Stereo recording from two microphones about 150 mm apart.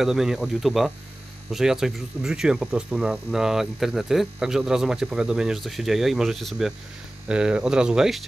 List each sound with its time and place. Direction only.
0.0 s speech: 5° right (ahead or behind)